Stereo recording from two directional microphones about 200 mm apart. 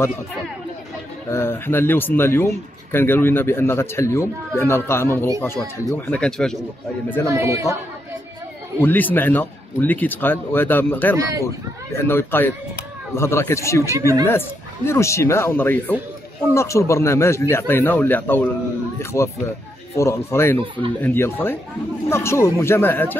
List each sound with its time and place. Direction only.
1.3 s a man's voice: 10° left (ahead or behind)
7.2 s speech: 15° right (ahead or behind)
8.7 s a man's voice: 10° left (ahead or behind)
13.9 s speech: 15° right (ahead or behind)
14.9 s a man's voice: 15° left (ahead or behind)